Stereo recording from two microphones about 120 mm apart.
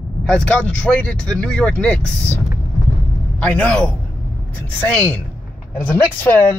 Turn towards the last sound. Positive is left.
turn(degrees=15)  # may be behind; listen again after turning